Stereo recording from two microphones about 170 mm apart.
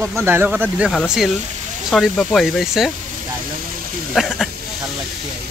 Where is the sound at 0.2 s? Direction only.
10° right (ahead or behind).